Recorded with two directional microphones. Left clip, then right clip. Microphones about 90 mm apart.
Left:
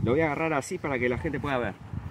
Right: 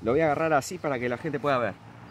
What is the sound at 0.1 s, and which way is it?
Speech, 90° right.